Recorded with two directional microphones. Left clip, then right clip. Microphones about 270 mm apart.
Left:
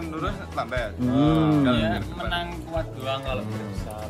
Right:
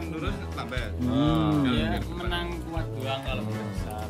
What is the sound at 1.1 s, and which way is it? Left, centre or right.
Speech, centre.